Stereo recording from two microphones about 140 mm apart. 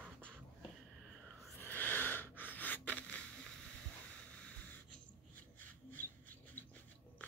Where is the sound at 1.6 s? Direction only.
15° left (ahead or behind).